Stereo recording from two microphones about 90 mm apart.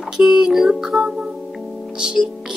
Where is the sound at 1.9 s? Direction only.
10° right (ahead or behind).